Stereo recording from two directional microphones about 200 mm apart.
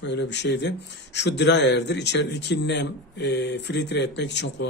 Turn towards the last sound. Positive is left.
turn(degrees=60)  # may be behind; listen again after turning